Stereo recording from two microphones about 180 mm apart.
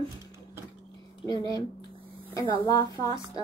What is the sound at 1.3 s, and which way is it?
Speech, 20° left (ahead or behind).